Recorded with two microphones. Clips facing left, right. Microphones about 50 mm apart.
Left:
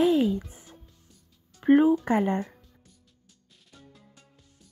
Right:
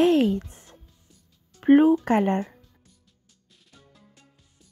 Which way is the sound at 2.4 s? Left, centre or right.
Centre.